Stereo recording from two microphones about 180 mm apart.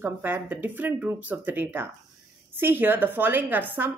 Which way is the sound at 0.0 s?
10° right (ahead or behind).